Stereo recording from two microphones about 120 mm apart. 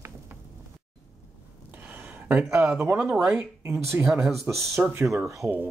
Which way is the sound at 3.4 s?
15° right (ahead or behind).